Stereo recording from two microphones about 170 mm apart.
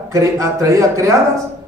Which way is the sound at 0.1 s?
20° right (ahead or behind).